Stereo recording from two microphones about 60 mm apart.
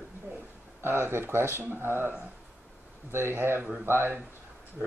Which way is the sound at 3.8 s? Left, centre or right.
Right.